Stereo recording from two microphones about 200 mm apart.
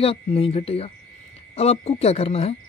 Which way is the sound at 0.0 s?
30° left (ahead or behind).